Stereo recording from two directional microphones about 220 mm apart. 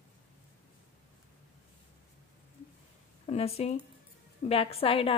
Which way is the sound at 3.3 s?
30° left (ahead or behind).